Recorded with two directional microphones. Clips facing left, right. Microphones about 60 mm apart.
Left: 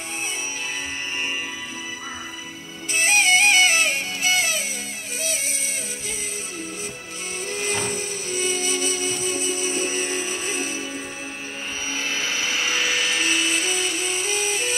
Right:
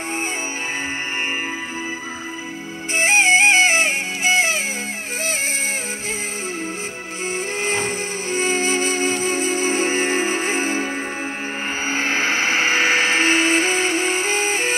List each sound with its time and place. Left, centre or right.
3.0 s music: right
7.5 s music: right
11.9 s vehicle: right